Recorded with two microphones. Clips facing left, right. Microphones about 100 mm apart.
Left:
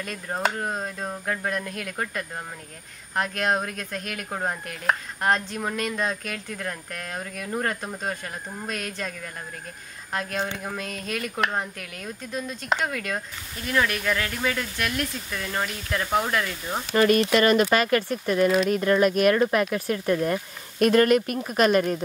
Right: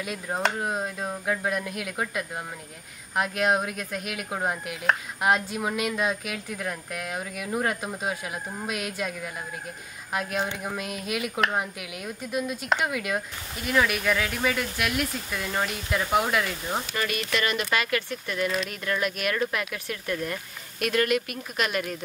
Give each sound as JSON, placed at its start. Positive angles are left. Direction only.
{"t": 0.0, "sound": "speech", "side_deg": -5}
{"t": 0.4, "sound": "chopping", "side_deg": -5}
{"t": 10.1, "sound": "speech", "side_deg": -5}
{"t": 16.9, "sound": "speech", "side_deg": 40}